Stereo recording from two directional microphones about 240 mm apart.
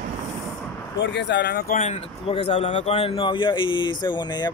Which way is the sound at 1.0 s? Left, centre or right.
Left.